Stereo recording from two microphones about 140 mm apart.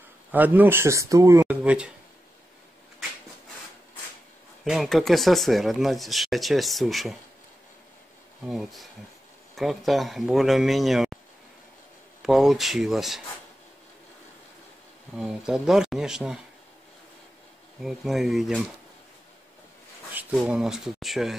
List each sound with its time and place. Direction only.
0.3 s speech: 10° right (ahead or behind)
4.6 s speech: centre (ahead or behind)
8.5 s speech: centre (ahead or behind)
12.2 s speech: centre (ahead or behind)
15.1 s speech: 5° right (ahead or behind)
17.8 s speech: centre (ahead or behind)
20.3 s speech: 5° right (ahead or behind)